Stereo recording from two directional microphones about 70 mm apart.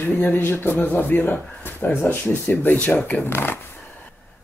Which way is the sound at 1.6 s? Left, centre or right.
Left.